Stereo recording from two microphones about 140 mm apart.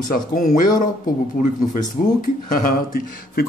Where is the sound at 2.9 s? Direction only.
90° left.